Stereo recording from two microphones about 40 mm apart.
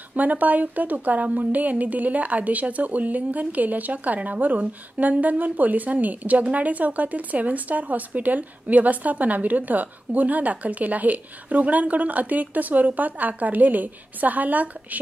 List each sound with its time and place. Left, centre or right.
0.1 s a woman's voice: right